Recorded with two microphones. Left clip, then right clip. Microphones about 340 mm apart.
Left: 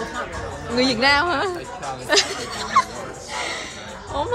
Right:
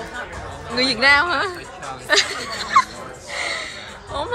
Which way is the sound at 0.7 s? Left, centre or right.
Centre.